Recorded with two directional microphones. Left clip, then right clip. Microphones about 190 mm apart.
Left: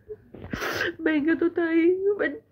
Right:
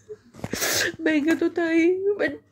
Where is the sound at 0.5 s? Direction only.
5° right (ahead or behind).